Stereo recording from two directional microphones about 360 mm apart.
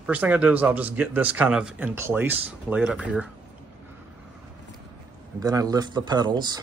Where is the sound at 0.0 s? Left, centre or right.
Centre.